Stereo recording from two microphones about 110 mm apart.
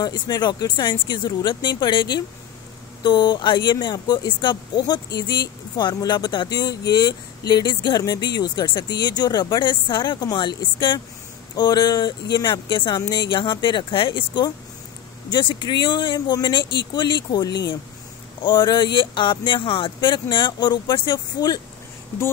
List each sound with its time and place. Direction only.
0.0 s speech: 40° left (ahead or behind)